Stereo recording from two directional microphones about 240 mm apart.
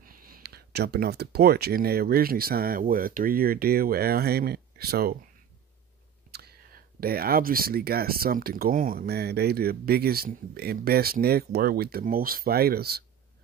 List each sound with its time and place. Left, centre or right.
0.0 s speech: right
6.3 s speech: right